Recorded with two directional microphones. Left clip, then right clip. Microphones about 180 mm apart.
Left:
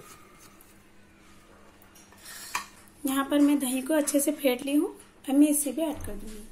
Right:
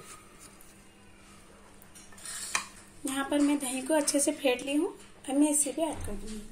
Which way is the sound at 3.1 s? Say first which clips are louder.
Left 4 dB; 45° left (ahead or behind).